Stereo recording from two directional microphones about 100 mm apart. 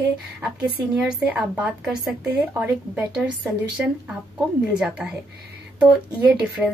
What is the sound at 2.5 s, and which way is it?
Speech, 15° right (ahead or behind).